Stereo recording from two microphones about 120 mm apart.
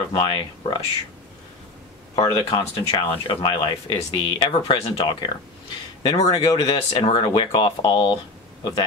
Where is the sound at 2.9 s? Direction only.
40° left (ahead or behind).